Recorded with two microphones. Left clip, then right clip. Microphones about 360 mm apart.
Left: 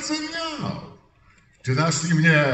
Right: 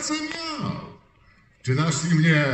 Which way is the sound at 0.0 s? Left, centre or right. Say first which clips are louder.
Left 1 dB; left.